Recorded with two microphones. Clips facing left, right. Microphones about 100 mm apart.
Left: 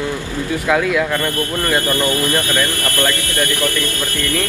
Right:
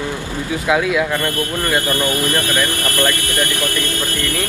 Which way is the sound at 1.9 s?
20° left (ahead or behind).